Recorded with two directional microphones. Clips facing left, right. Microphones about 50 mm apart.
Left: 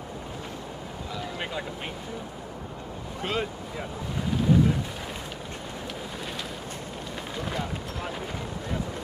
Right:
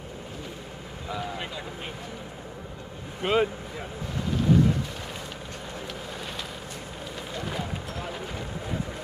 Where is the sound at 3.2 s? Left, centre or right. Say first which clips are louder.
Right 6 dB; centre.